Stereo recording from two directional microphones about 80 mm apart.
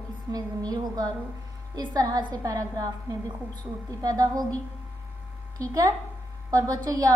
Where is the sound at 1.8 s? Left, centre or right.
Right.